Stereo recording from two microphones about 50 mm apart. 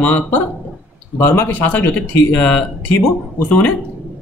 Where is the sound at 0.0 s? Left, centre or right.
Left.